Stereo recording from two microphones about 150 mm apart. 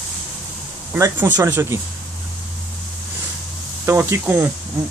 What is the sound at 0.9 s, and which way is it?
Speech, 15° right (ahead or behind).